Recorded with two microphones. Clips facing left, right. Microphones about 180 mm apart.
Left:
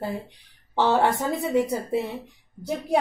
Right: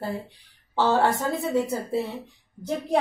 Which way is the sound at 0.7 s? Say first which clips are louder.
Left 1 dB; 15° left (ahead or behind).